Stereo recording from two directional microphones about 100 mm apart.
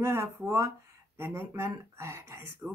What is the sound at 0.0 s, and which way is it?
Speech, 25° right (ahead or behind).